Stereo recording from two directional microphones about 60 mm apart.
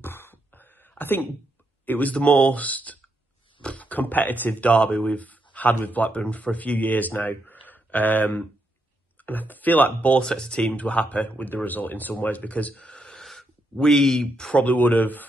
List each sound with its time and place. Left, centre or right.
0.0 s a sound: left
1.9 s speech: left
10.2 s speech: centre
14.3 s speech: centre
14.6 s speech: left